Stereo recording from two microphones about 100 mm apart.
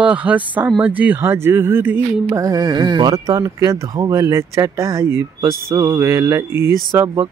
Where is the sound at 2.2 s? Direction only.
35° right (ahead or behind).